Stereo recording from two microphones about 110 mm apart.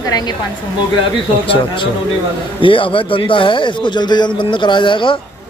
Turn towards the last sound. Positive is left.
turn(degrees=50)  # may be behind; listen again after turning